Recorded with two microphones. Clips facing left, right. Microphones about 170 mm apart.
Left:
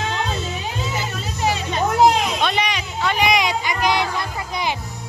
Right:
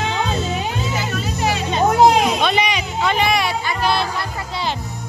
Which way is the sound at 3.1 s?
15° left (ahead or behind).